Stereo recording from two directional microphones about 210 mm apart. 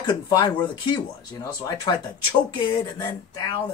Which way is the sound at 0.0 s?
20° left (ahead or behind).